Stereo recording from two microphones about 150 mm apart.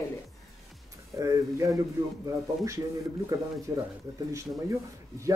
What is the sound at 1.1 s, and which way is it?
Speech, 20° right (ahead or behind).